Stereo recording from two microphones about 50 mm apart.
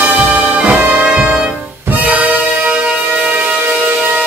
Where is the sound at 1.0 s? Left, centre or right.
Right.